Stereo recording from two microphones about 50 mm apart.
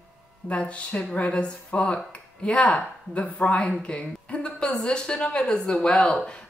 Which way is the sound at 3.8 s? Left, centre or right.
Left.